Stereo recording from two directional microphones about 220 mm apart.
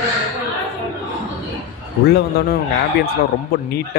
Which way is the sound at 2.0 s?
45° left (ahead or behind).